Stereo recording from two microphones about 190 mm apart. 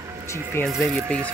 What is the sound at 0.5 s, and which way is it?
Speech, 5° left (ahead or behind).